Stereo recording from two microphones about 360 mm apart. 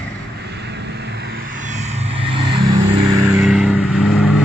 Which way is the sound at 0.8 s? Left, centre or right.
Right.